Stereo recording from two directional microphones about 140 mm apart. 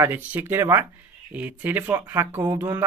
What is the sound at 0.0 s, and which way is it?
Speech, 15° right (ahead or behind).